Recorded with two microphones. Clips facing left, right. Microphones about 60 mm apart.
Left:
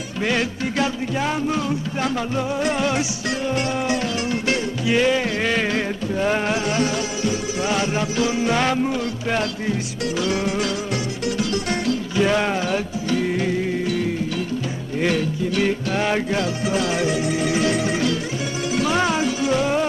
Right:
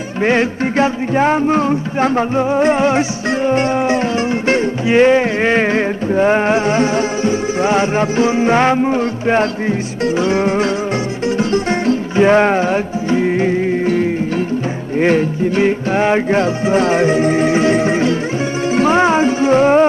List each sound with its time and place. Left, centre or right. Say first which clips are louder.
0.2 s music: right 8 dB; right